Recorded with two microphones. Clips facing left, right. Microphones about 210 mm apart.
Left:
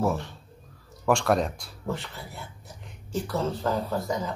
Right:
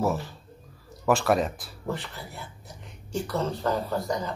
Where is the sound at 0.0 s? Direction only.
5° right (ahead or behind).